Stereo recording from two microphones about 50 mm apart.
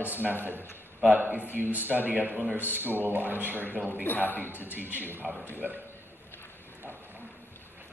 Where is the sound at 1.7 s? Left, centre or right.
Right.